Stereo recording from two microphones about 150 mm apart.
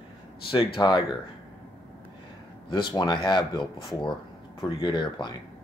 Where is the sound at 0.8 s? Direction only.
30° left (ahead or behind).